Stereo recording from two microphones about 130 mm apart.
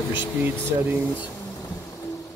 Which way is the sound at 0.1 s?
40° left (ahead or behind).